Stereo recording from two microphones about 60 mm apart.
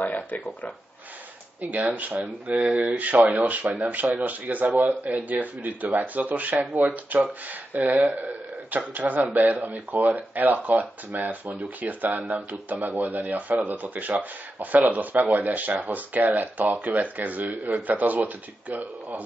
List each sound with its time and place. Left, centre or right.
0.0 s speech: left
1.9 s speech: right